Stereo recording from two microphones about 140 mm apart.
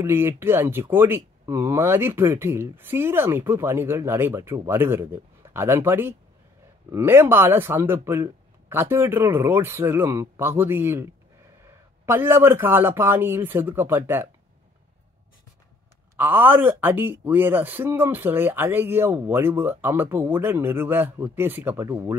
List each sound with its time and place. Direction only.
0.0 s speech: 15° right (ahead or behind)
16.2 s speech: 15° right (ahead or behind)